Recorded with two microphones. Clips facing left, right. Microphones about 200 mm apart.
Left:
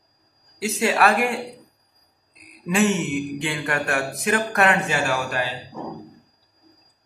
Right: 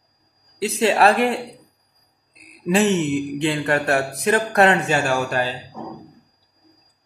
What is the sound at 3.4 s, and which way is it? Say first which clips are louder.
Mantra: right 5 dB; 30° right (ahead or behind).